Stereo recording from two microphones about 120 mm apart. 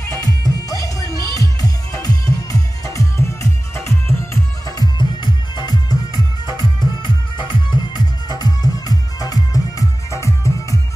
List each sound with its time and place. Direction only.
0.1 s music: 30° left (ahead or behind)